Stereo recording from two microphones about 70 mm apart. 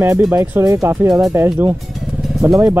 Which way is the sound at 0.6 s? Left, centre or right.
Right.